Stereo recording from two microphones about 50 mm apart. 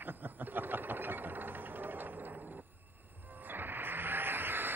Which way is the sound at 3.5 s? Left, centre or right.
Right.